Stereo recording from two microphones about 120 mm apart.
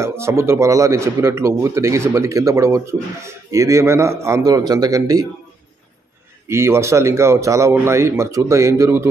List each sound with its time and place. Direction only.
0.0 s speech: 20° right (ahead or behind)
6.4 s speech: 20° right (ahead or behind)